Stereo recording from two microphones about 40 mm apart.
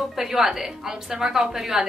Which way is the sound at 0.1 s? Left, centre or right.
Centre.